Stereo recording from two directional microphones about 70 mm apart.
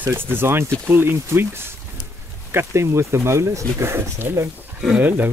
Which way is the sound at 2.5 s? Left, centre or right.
Right.